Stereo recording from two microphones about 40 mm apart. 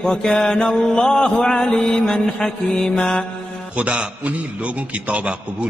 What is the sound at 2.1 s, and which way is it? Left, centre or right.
Mantra, centre.